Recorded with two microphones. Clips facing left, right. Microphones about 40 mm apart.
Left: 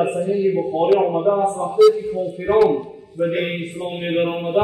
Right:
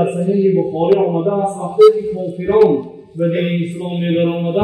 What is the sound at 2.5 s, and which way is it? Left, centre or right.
Speech, centre.